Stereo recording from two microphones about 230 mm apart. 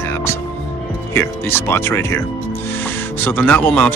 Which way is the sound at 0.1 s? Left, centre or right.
Centre.